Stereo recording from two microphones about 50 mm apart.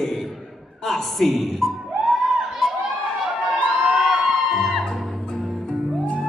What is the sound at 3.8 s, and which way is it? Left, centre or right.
Music, centre.